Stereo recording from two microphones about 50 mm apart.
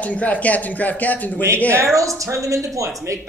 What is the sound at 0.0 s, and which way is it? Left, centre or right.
A woman's voice, left.